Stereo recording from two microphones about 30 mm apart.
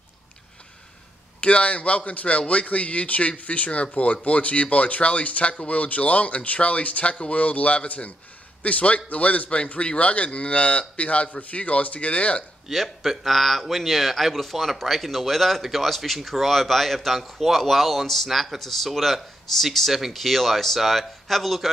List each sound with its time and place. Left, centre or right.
1.4 s a man's voice: left
12.7 s speech: centre